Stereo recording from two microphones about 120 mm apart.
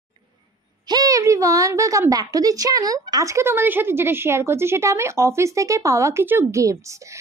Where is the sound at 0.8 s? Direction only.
30° right (ahead or behind).